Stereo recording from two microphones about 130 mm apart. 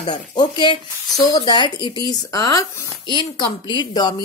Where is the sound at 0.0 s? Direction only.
35° left (ahead or behind).